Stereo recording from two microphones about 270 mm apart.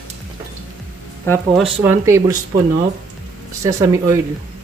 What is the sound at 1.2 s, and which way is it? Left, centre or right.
Speech, centre.